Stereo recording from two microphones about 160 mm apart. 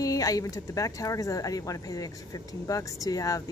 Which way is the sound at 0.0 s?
20° left (ahead or behind).